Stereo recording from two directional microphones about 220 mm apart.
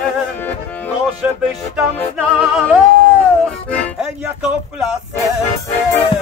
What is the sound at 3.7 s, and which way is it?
Music, 5° left (ahead or behind).